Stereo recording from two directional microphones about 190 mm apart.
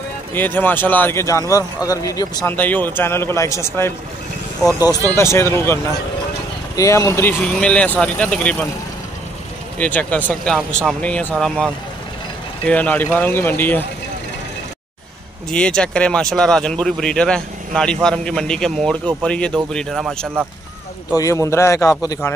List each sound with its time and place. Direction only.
0.3 s speech: 10° left (ahead or behind)
4.6 s speech: 15° right (ahead or behind)
5.1 s speech: 15° left (ahead or behind)
6.8 s speech: 15° left (ahead or behind)
9.8 s speech: 10° left (ahead or behind)
15.5 s speech: 5° left (ahead or behind)
21.2 s speech: 15° left (ahead or behind)